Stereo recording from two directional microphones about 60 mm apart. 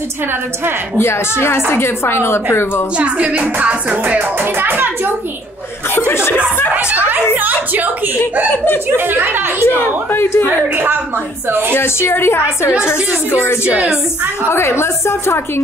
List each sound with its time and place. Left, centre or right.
0.9 s a woman's voice: left
3.0 s music: right
5.9 s speech: left
6.7 s music: right
8.9 s a woman's voice: right
10.1 s a woman's voice: left
11.7 s a woman's voice: left